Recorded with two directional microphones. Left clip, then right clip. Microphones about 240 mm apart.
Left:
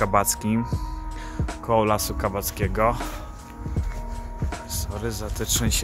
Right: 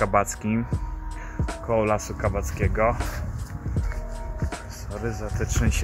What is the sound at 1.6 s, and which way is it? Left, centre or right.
Speech, centre.